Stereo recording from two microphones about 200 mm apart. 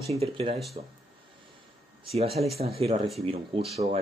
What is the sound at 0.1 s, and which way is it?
Speech, 30° right (ahead or behind).